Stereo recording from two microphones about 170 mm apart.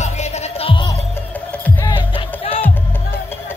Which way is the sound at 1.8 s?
30° left (ahead or behind).